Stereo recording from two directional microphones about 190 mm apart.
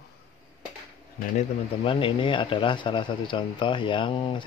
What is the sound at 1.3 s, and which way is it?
Speech, 30° left (ahead or behind).